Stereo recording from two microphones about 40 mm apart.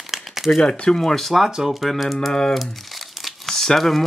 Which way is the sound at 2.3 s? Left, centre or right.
Centre.